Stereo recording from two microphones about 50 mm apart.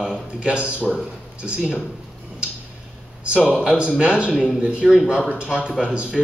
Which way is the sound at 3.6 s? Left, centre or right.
Centre.